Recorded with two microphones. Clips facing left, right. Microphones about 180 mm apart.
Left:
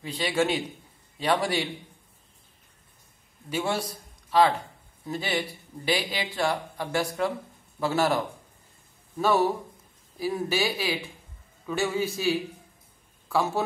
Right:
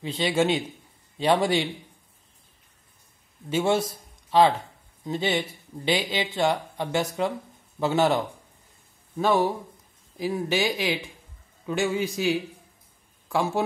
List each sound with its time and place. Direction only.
0.0 s speech: 25° right (ahead or behind)
3.4 s a man's voice: 25° right (ahead or behind)
10.1 s speech: 15° right (ahead or behind)